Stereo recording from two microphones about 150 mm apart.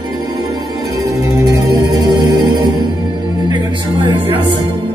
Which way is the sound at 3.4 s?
30° right (ahead or behind).